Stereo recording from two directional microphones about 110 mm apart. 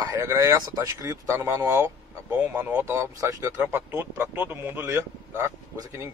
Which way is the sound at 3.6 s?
20° right (ahead or behind).